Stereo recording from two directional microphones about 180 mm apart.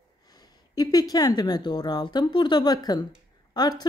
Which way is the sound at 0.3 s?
20° left (ahead or behind).